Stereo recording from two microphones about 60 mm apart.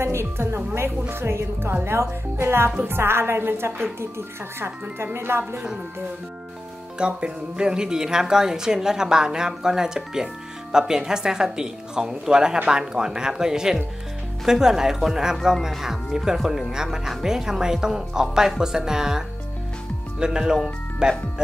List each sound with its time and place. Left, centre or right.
0.0 s a woman's voice: right
7.0 s speech: centre